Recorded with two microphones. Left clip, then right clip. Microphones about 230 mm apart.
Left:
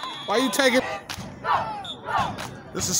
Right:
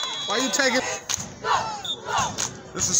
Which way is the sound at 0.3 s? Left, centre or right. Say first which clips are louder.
Left 2 dB; centre.